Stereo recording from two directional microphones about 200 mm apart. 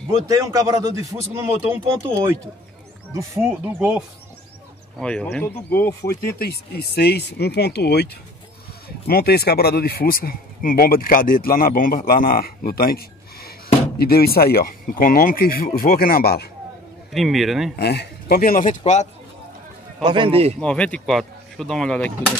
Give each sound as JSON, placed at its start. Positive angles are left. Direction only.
{"t": 0.3, "sound": "speech", "side_deg": -15}
{"t": 3.1, "sound": "speech", "side_deg": -15}
{"t": 4.9, "sound": "speech", "side_deg": 5}
{"t": 6.2, "sound": "speech", "side_deg": 50}
{"t": 17.1, "sound": "speech", "side_deg": 0}
{"t": 17.7, "sound": "speech", "side_deg": 55}
{"t": 20.0, "sound": "a man's voice", "side_deg": -25}
{"t": 20.6, "sound": "speech", "side_deg": 5}